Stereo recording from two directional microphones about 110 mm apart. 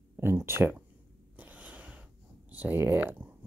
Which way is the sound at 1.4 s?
15° right (ahead or behind).